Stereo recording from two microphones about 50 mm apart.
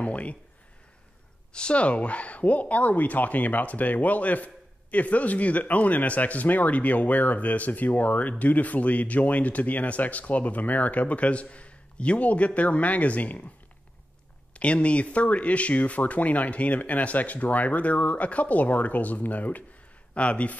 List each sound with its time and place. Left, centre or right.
0.0 s speech: left
1.5 s speech: left
14.5 s speech: left